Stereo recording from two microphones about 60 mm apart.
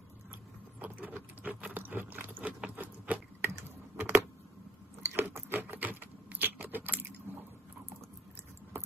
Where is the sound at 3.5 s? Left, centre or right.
Right.